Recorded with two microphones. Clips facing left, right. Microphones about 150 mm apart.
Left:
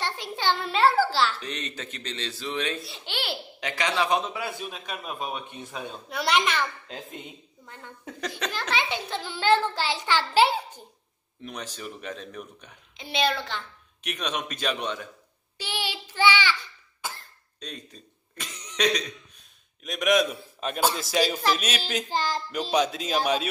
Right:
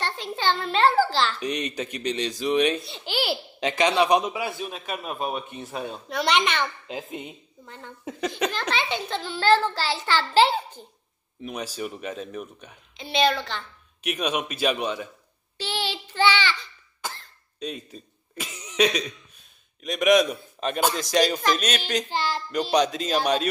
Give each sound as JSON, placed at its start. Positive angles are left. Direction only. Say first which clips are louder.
{"t": 0.0, "sound": "a sound", "louder": "right 2 dB", "side_deg": 10}
{"t": 1.4, "sound": "speech", "louder": "right 7 dB", "side_deg": -15}
{"t": 2.8, "sound": "a man's voice", "louder": "right 6 dB", "side_deg": 0}
{"t": 3.6, "sound": "a man's voice", "louder": "right 6 dB", "side_deg": -20}
{"t": 4.5, "sound": "a man's voice", "louder": "right 3 dB", "side_deg": 0}
{"t": 8.7, "sound": "a child's voice", "louder": "right 1 dB", "side_deg": 10}
{"t": 11.4, "sound": "speech", "louder": "right 5 dB", "side_deg": -10}
{"t": 12.9, "sound": "a child's voice", "louder": "right 4 dB", "side_deg": 10}
{"t": 14.0, "sound": "speech", "louder": "right 5 dB", "side_deg": -10}
{"t": 15.5, "sound": "cough", "louder": "right 3 dB", "side_deg": 10}
{"t": 17.6, "sound": "throat clearing", "louder": "right 7 dB", "side_deg": -5}
{"t": 19.8, "sound": "a man's voice", "louder": "right 4 dB", "side_deg": 0}
{"t": 22.1, "sound": "speech", "louder": "left 3 dB", "side_deg": 40}
{"t": 22.7, "sound": "a child's voice", "louder": "right 2 dB", "side_deg": 5}